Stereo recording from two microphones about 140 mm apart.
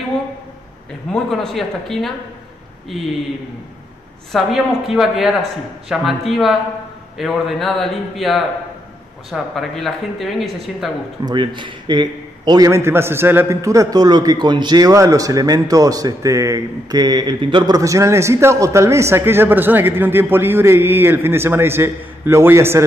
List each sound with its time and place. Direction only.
1.1 s speech: 5° left (ahead or behind)
4.3 s speech: 5° right (ahead or behind)
11.2 s a man's voice: 35° right (ahead or behind); by 22.8 s 15° right (ahead or behind)